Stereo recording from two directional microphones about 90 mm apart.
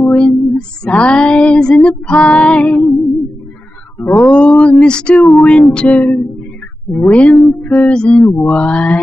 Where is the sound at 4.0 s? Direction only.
20° left (ahead or behind).